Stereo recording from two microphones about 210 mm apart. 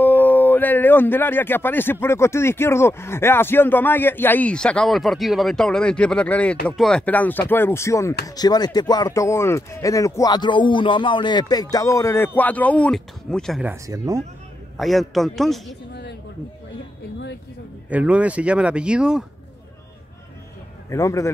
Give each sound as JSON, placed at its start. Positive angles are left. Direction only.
{"t": 0.0, "sound": "speech", "side_deg": 10}
{"t": 13.8, "sound": "speech", "side_deg": -15}
{"t": 14.8, "sound": "speech", "side_deg": 0}
{"t": 15.9, "sound": "a sound", "side_deg": 55}
{"t": 17.8, "sound": "speech", "side_deg": -5}
{"t": 20.9, "sound": "speech", "side_deg": 15}